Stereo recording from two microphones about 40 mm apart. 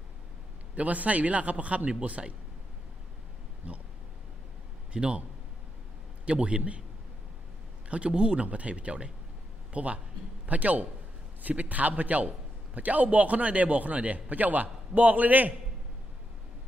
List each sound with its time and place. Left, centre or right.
0.7 s a man's voice: right
4.9 s speech: right
6.2 s a man's voice: right
8.1 s speech: right
8.5 s a man's voice: right